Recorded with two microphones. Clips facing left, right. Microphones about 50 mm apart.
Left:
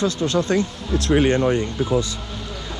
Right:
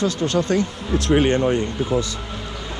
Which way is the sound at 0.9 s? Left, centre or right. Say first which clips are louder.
Right 1 dB; right.